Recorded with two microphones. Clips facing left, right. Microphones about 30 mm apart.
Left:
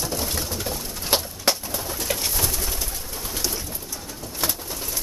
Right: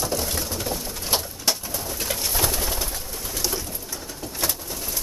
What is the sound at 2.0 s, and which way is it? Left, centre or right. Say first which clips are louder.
Bird: left 2 dB; centre.